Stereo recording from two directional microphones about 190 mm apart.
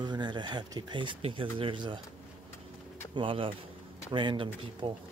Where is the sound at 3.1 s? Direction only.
25° right (ahead or behind).